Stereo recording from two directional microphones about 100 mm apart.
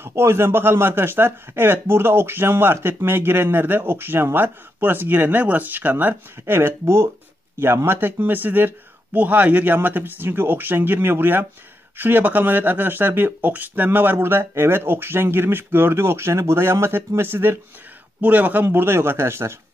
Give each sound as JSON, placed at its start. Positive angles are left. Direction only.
{"t": 0.0, "sound": "a man's voice", "side_deg": -25}